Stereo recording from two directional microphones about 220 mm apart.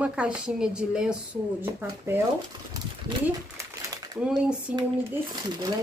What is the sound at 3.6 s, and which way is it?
Crumpling, 20° right (ahead or behind).